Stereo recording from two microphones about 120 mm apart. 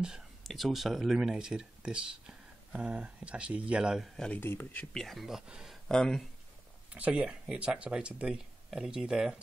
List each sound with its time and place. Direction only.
0.0 s speech: centre (ahead or behind)
4.4 s speech: 20° left (ahead or behind)
4.9 s speech: centre (ahead or behind)
5.9 s speech: 5° left (ahead or behind)
6.9 s speech: 10° right (ahead or behind)